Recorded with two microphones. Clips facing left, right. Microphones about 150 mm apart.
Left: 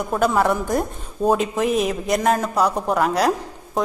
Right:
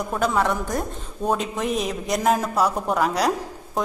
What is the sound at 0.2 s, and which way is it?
A woman's voice, 5° left (ahead or behind).